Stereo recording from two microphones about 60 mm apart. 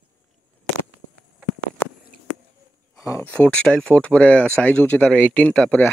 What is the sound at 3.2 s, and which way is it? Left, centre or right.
Speech, left.